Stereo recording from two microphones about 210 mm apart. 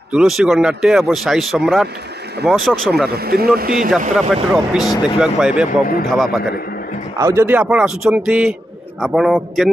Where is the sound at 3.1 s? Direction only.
50° right (ahead or behind).